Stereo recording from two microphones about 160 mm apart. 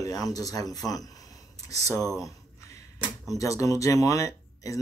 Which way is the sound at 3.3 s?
20° left (ahead or behind).